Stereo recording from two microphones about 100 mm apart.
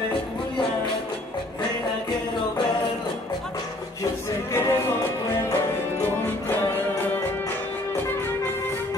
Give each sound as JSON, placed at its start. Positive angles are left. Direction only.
{"t": 4.5, "sound": "music", "side_deg": 25}